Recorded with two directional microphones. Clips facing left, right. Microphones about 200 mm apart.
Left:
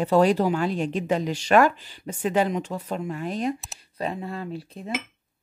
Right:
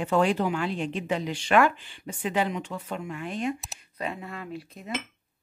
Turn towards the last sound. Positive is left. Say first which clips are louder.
# left 4 dB
turn(degrees=30)  # may be behind; listen again after turning